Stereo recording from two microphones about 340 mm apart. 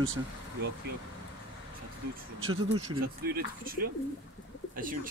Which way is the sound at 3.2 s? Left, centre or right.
Right.